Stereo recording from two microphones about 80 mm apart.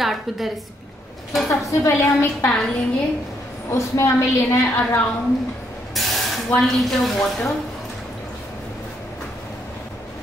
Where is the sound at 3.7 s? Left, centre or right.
Left.